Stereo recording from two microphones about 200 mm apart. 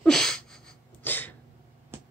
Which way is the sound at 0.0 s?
5° left (ahead or behind).